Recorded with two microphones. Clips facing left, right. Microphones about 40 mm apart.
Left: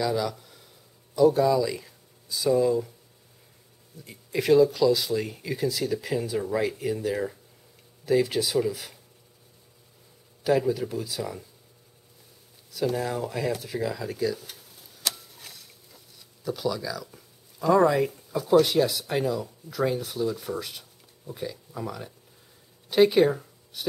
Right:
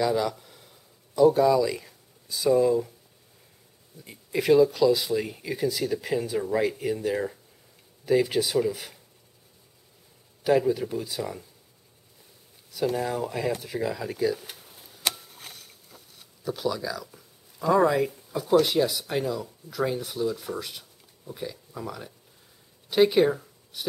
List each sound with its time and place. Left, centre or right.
0.0 s a sound: centre
4.0 s speech: centre
10.4 s speech: centre
12.7 s speech: centre; by 14.9 s right
15.3 s a sound: right
16.4 s speech: centre